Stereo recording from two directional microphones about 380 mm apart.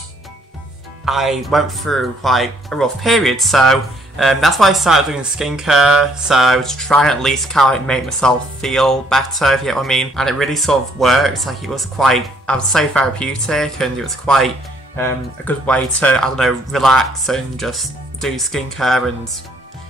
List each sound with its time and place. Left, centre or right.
1.0 s speech: centre